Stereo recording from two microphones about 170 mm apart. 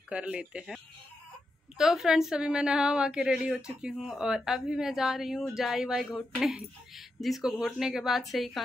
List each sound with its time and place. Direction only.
0.1 s speech: 5° right (ahead or behind)
1.8 s a woman's voice: centre (ahead or behind)